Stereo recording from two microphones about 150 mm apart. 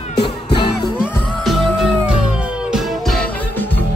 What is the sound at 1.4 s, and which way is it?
Music, centre (ahead or behind).